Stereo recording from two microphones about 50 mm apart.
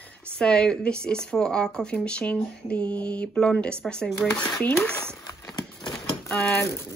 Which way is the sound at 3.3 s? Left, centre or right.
Centre.